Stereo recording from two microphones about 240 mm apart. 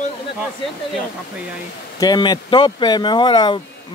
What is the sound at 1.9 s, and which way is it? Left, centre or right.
Speech, centre.